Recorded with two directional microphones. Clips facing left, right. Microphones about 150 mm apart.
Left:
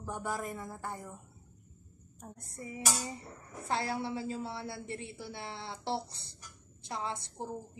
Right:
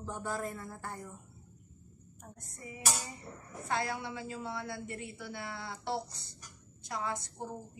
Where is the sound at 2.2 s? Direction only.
30° left (ahead or behind).